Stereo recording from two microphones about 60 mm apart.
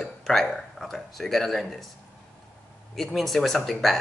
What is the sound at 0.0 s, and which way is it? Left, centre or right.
Speech, centre.